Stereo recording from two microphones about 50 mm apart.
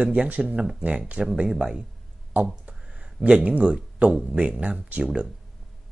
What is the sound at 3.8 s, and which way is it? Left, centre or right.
Speech, right.